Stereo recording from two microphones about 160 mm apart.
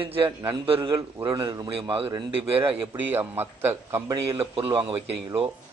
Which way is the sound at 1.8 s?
35° right (ahead or behind).